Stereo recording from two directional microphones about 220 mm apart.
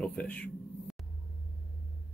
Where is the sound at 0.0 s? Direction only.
5° left (ahead or behind).